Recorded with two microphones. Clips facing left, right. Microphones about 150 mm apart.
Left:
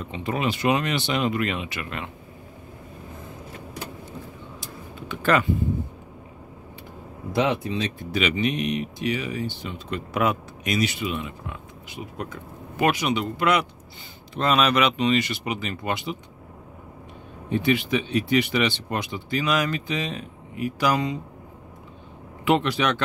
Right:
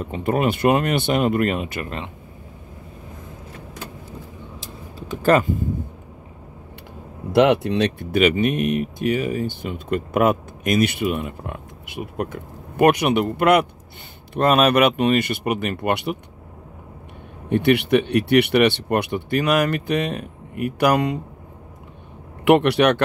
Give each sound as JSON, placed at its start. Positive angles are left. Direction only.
{"t": 0.0, "sound": "speech", "side_deg": -50}
{"t": 4.9, "sound": "speech", "side_deg": -40}
{"t": 7.3, "sound": "speech", "side_deg": -70}
{"t": 17.5, "sound": "speech", "side_deg": -65}
{"t": 22.4, "sound": "speech", "side_deg": -65}